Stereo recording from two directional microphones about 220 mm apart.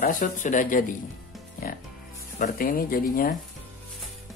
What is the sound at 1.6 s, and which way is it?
Music, 40° left (ahead or behind).